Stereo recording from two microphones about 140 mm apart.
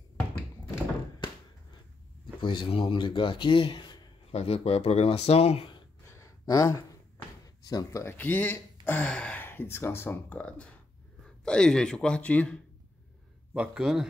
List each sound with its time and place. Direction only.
2.4 s speech: 35° left (ahead or behind)
4.4 s speech: 45° left (ahead or behind)
6.0 s a sound: 20° left (ahead or behind)
7.4 s speech: 25° left (ahead or behind); by 12.5 s 10° left (ahead or behind)
13.5 s a man's voice: 5° right (ahead or behind)